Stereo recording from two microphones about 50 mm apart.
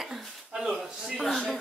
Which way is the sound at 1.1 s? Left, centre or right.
Centre.